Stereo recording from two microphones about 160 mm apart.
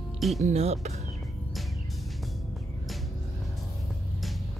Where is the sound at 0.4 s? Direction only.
45° right (ahead or behind).